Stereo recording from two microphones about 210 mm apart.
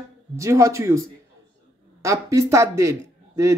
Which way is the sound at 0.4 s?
15° right (ahead or behind).